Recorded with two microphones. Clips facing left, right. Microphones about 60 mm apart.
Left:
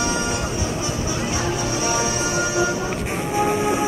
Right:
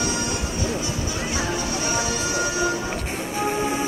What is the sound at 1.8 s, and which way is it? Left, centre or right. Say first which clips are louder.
Music: left 3 dB; centre.